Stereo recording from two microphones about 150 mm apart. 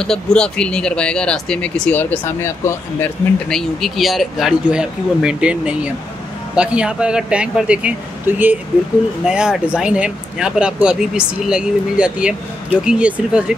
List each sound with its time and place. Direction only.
0.0 s speech: 5° left (ahead or behind)
3.4 s speech: centre (ahead or behind)